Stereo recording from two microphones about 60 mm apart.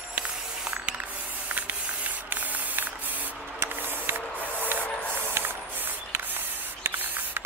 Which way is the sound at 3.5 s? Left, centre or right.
Right.